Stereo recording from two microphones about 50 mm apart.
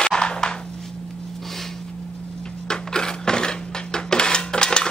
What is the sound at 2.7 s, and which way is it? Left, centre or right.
Music, centre.